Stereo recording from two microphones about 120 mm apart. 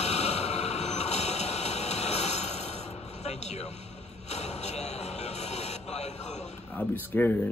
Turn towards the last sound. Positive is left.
turn(degrees=15)  # may be behind; listen again after turning